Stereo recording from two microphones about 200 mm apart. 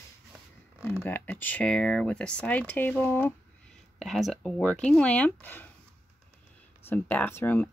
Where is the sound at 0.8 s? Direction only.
10° left (ahead or behind).